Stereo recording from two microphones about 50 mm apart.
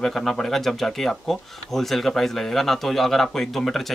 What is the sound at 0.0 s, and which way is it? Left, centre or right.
Speech, centre.